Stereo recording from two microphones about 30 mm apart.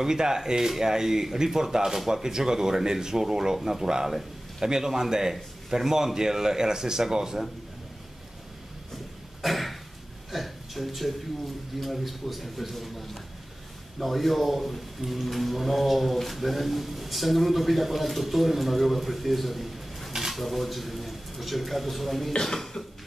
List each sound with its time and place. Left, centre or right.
0.0 s speech: right
8.9 s a sound: centre
11.8 s speech: centre
22.4 s speech: centre